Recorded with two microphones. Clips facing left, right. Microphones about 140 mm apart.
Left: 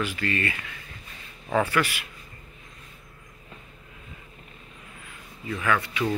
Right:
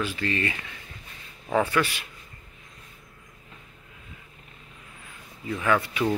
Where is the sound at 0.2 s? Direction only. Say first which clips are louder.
Even; 20° right (ahead or behind).